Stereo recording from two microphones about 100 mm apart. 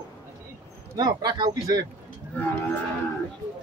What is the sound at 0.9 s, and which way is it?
Speech, 45° right (ahead or behind).